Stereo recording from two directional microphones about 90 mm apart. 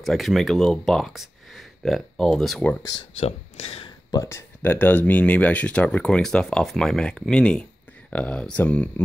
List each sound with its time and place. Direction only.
0.0 s speech: centre (ahead or behind)
3.2 s speech: 90° left
4.1 s speech: 35° left (ahead or behind)
4.6 s speech: 20° left (ahead or behind)